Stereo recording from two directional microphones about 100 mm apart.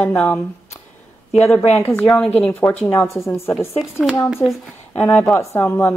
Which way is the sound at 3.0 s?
30° left (ahead or behind).